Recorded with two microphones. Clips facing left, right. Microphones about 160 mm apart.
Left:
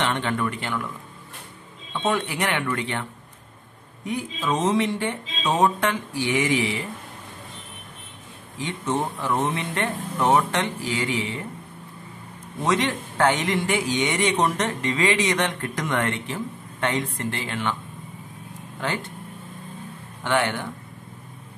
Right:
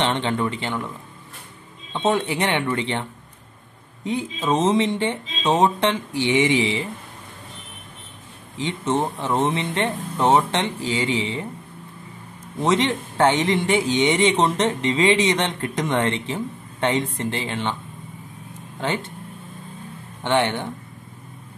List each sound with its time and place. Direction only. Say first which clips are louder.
0.0 s a man's voice: right 2 dB; 25° right (ahead or behind)
2.0 s a man's voice: right 3 dB; 25° right (ahead or behind)
8.5 s a man's voice: right 3 dB; 25° right (ahead or behind)
12.6 s a man's voice: right 3 dB; 25° right (ahead or behind)
20.2 s a man's voice: right 3 dB; 25° right (ahead or behind)